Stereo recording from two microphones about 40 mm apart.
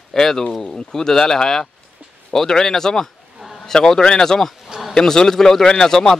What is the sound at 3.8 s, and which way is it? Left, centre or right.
Speech, centre.